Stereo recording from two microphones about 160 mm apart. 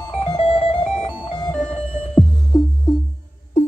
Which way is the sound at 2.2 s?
Centre (ahead or behind).